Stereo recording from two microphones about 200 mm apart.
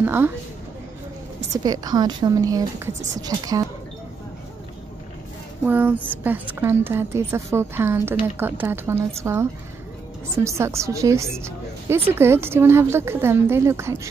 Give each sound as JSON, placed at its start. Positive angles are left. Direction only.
{"t": 0.0, "sound": "a woman's voice", "side_deg": -10}
{"t": 1.5, "sound": "a woman's voice", "side_deg": -20}
{"t": 5.7, "sound": "a woman's voice", "side_deg": -10}